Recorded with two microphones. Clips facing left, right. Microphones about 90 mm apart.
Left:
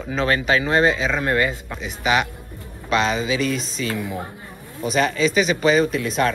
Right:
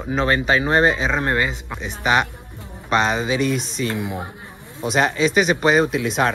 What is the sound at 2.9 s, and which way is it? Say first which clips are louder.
Speech: right 1 dB; 40° right (ahead or behind).